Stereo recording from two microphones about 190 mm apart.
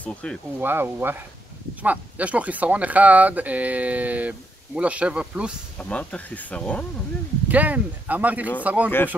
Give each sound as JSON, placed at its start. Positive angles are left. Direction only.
{"t": 0.0, "sound": "speech", "side_deg": 5}
{"t": 0.6, "sound": "speech", "side_deg": -10}
{"t": 5.8, "sound": "speech", "side_deg": 5}
{"t": 7.4, "sound": "speech", "side_deg": -10}